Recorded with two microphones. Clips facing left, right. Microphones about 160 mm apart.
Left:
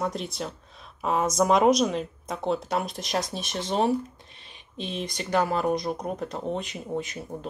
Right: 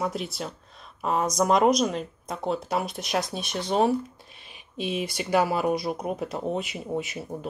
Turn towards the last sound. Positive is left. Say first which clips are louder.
# right 1 dB
turn(degrees=-10)  # may be behind; listen again after turning